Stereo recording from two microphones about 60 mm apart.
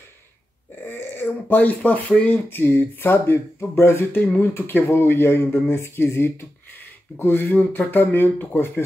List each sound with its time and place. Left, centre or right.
0.8 s a sound: left
1.9 s speech: left
2.5 s speech: left